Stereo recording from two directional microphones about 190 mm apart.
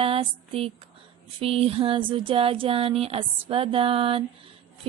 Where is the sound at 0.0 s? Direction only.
30° right (ahead or behind).